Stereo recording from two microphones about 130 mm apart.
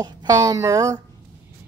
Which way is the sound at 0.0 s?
30° right (ahead or behind).